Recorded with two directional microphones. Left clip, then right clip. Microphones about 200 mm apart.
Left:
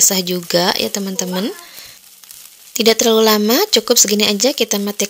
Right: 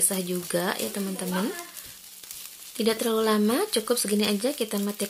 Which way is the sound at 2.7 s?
40° left (ahead or behind).